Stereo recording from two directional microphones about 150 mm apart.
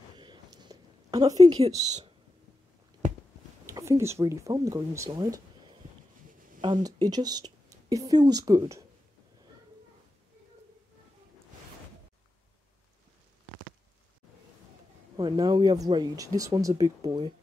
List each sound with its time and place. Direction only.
0.2 s a sound: 30° right (ahead or behind)
1.6 s a woman's voice: 50° right (ahead or behind)
3.6 s speech: 20° right (ahead or behind)
6.6 s a woman's voice: 30° right (ahead or behind)
15.1 s speech: 30° right (ahead or behind)